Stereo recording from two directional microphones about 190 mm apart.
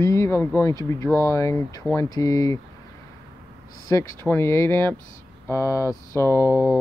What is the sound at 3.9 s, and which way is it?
Speech, 15° left (ahead or behind).